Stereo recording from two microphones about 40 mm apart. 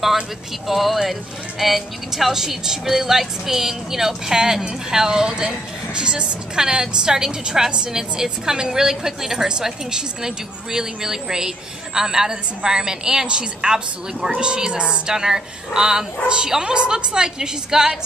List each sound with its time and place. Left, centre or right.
0.7 s a woman's voice: centre